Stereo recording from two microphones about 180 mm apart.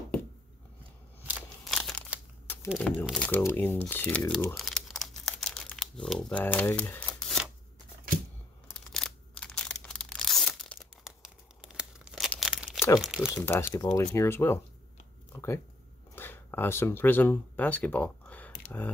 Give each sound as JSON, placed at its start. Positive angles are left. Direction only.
{"t": 1.2, "sound": "crumpling", "side_deg": -5}
{"t": 2.4, "sound": "a sound", "side_deg": 10}
{"t": 3.1, "sound": "speech", "side_deg": 10}
{"t": 4.6, "sound": "crumpling", "side_deg": 0}
{"t": 8.7, "sound": "a sound", "side_deg": 5}
{"t": 12.3, "sound": "tearing", "side_deg": 0}
{"t": 13.0, "sound": "speech", "side_deg": -5}
{"t": 13.3, "sound": "speech", "side_deg": 15}
{"t": 15.3, "sound": "a sound", "side_deg": 15}
{"t": 16.2, "sound": "speech", "side_deg": 10}